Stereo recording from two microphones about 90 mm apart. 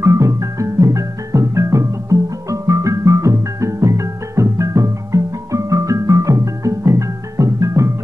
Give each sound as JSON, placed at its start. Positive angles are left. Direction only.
{"t": 0.0, "sound": "music", "side_deg": -35}